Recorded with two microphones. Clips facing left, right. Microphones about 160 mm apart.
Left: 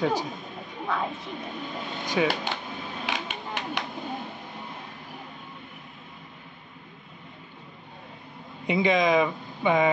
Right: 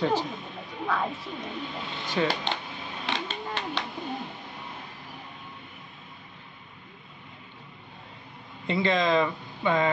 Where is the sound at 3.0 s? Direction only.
15° left (ahead or behind).